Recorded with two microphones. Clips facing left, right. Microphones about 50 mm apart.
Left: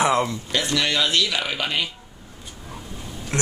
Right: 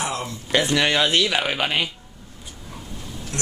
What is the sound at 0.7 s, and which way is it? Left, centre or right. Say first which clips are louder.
Speech: even; right.